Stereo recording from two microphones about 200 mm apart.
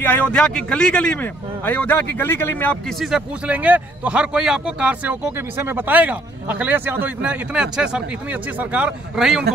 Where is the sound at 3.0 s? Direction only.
5° right (ahead or behind).